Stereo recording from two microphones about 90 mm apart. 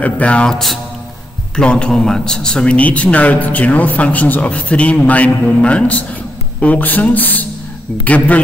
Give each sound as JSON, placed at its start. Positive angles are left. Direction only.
{"t": 0.0, "sound": "speech", "side_deg": 15}